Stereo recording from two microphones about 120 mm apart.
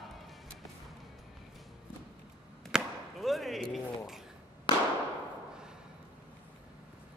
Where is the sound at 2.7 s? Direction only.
Centre (ahead or behind).